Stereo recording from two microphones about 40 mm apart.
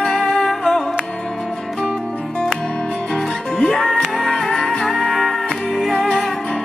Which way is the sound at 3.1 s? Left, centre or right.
Centre.